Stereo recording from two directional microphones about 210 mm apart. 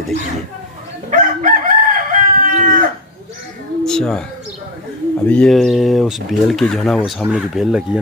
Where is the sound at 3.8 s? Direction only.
5° left (ahead or behind).